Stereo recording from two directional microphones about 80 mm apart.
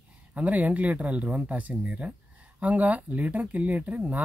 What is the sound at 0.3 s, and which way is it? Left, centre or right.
Speech, centre.